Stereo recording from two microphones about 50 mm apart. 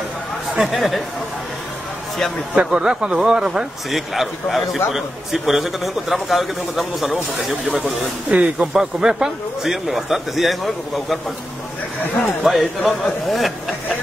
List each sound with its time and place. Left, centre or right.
0.6 s speech: centre
2.5 s speech: right
3.9 s speech: centre
8.3 s speech: right
8.7 s speech: centre
12.4 s speech: centre
13.0 s speech: centre